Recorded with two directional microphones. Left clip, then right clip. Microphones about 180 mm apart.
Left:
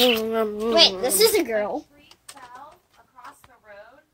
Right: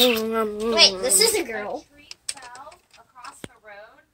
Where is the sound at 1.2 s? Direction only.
55° left (ahead or behind).